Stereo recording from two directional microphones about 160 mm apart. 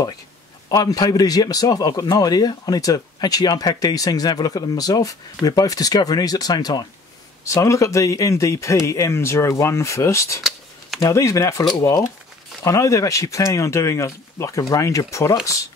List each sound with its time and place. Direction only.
0.7 s a man's voice: 25° left (ahead or behind)